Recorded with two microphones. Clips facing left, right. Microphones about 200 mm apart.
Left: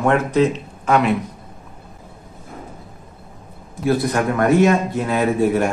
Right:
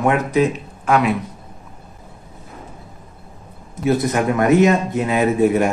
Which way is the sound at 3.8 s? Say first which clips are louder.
Right 1 dB; 20° right (ahead or behind).